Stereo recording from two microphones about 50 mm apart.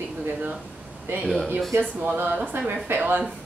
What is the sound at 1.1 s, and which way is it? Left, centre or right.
Speech, right.